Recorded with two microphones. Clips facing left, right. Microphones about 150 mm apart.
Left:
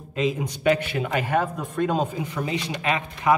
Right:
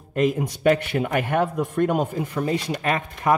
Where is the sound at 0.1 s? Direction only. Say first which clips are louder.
Right 3 dB; 55° right (ahead or behind).